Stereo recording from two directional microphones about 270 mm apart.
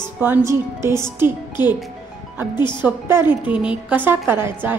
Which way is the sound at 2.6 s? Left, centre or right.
Centre.